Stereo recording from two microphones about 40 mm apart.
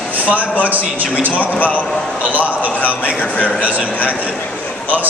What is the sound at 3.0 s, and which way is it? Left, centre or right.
Speech, left.